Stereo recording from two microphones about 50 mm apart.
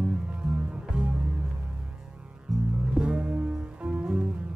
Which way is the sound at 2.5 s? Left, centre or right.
Centre.